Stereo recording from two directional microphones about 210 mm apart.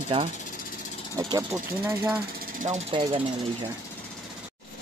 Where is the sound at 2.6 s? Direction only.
30° right (ahead or behind).